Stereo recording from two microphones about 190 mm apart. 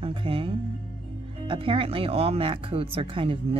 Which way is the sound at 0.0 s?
25° right (ahead or behind).